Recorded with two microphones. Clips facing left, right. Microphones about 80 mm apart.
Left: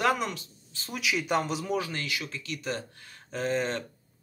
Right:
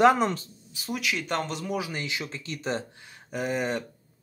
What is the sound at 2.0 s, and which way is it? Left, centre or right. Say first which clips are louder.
Speech: right 1 dB; right.